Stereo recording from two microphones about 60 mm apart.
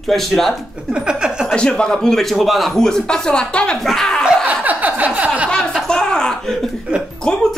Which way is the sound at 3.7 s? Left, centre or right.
Centre.